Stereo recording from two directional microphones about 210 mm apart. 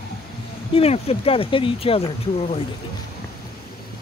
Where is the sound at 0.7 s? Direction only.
30° left (ahead or behind).